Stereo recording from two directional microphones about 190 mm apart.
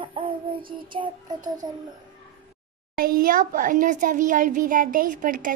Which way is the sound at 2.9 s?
50° right (ahead or behind).